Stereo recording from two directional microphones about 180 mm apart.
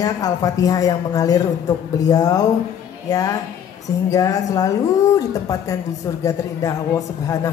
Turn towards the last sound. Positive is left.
turn(degrees=20)  # may be behind; listen again after turning